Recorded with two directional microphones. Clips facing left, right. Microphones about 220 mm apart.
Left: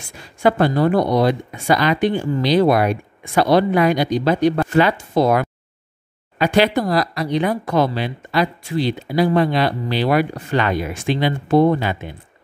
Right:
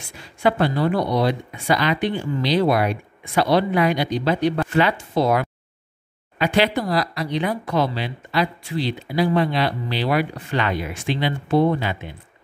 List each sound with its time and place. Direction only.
0.4 s speech: 45° left (ahead or behind)